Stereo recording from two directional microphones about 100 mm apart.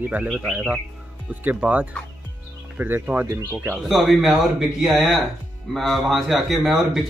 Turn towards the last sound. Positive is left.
turn(degrees=0)  # may be behind; listen again after turning